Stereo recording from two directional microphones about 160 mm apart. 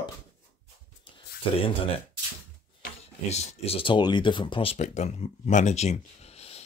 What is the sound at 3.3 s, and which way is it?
Speech, 45° left (ahead or behind).